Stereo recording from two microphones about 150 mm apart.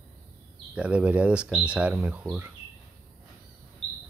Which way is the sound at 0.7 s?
10° right (ahead or behind).